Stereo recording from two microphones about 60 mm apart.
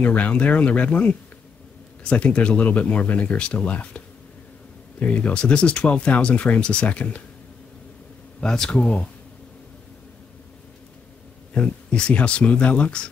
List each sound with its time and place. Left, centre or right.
0.0 s speech: left
8.4 s speech: centre
11.5 s speech: centre